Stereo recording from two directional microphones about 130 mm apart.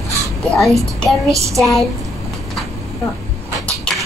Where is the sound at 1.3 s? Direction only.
25° right (ahead or behind).